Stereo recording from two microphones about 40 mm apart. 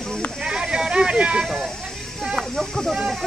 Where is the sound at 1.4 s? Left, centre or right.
Centre.